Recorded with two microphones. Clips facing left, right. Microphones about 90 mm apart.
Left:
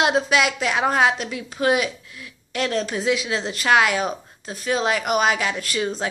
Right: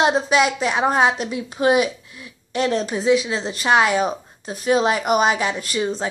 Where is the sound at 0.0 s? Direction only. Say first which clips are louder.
Right 2 dB; centre (ahead or behind).